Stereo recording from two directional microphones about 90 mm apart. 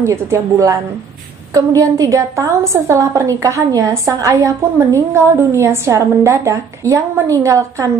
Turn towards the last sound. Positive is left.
turn(degrees=-35)  # may be behind; listen again after turning